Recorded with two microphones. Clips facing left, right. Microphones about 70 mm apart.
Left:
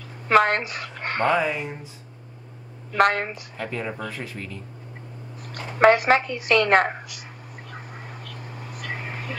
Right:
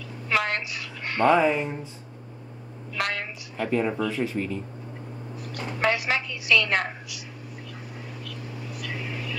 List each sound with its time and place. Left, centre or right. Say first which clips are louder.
0.3 s a woman's voice: left 8 dB; left
1.3 s speech: right 5 dB; centre
2.9 s a woman's voice: left 9 dB; left
3.7 s speech: right 7 dB; centre
5.4 s a woman's voice: left 9 dB; left
7.7 s a sound: left 1 dB; left